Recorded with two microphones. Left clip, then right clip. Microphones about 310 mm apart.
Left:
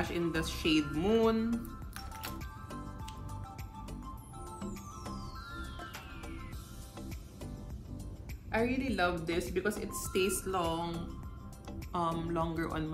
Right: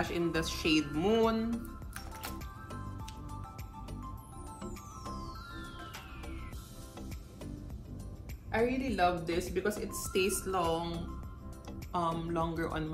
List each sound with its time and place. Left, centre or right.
0.0 s speech: centre
2.2 s music: centre
4.5 s music: centre
8.5 s a woman's voice: centre